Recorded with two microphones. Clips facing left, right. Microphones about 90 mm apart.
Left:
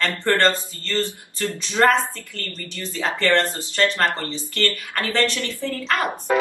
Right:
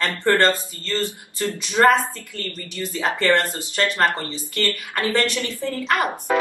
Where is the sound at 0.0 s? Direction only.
15° right (ahead or behind).